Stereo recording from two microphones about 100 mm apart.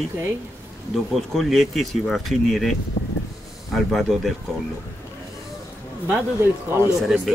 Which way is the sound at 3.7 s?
Centre (ahead or behind).